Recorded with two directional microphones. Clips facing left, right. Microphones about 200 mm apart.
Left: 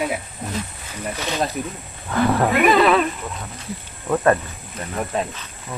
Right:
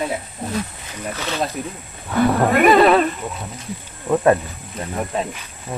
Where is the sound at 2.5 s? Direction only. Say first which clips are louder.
Right 4 dB; 50° right (ahead or behind).